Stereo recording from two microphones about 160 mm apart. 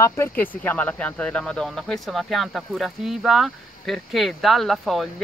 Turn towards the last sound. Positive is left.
turn(degrees=0)  # may be behind; listen again after turning